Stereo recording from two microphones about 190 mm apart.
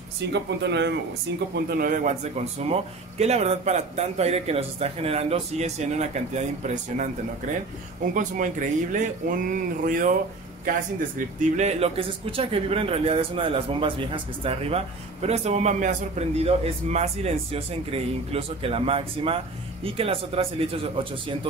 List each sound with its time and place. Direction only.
0.3 s speech: 60° right (ahead or behind)
1.5 s a man's voice: 45° right (ahead or behind)
8.1 s speech: 45° right (ahead or behind)
11.1 s a man's voice: 35° right (ahead or behind)